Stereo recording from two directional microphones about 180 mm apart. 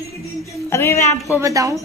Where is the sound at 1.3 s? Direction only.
20° right (ahead or behind).